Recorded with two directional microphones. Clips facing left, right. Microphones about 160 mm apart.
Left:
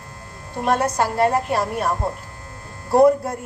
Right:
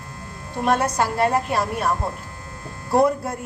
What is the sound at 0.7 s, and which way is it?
A woman's voice, 40° left (ahead or behind).